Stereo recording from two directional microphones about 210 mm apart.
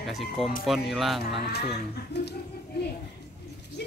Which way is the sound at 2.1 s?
55° left (ahead or behind).